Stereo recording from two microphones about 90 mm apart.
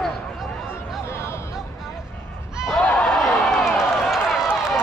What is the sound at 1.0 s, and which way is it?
Music, 30° left (ahead or behind).